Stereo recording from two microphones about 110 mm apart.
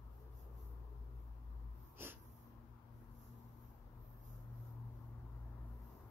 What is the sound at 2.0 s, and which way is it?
Snort, 20° right (ahead or behind).